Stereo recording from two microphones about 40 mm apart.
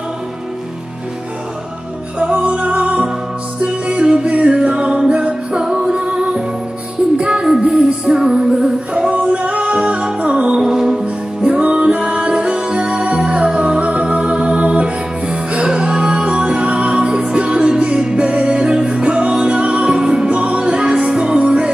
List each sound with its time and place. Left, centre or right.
2.1 s music: right
7.4 s music: centre
9.1 s music: right
10.6 s music: centre
11.4 s music: right
20.2 s music: right